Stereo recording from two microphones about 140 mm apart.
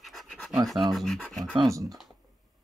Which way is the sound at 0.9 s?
Centre (ahead or behind).